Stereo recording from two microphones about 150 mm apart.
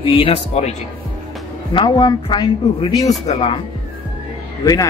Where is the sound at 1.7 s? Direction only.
30° left (ahead or behind).